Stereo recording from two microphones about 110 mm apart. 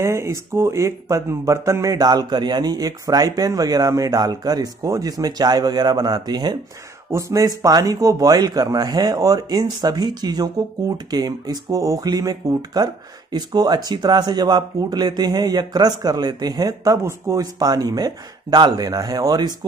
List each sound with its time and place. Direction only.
0.0 s speech: 25° right (ahead or behind)
7.1 s speech: 25° right (ahead or behind)